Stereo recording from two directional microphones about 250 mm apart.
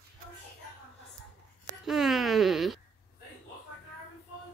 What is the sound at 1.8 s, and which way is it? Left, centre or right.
Speech, centre.